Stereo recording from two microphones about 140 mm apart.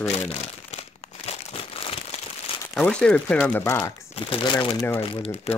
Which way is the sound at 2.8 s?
5° left (ahead or behind).